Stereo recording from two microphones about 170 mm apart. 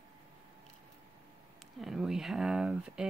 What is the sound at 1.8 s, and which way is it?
Speech, centre (ahead or behind).